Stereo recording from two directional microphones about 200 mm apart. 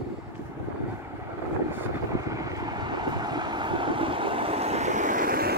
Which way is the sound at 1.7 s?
15° right (ahead or behind).